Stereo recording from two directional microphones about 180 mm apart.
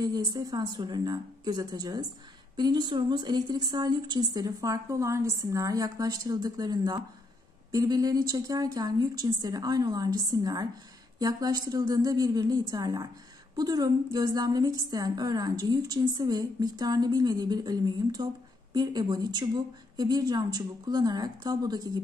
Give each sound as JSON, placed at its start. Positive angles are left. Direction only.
{"t": 0.0, "sound": "a woman's voice", "side_deg": -20}